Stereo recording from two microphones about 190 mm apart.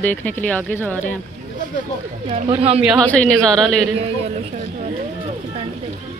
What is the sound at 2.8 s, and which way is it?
A woman's voice, 5° left (ahead or behind).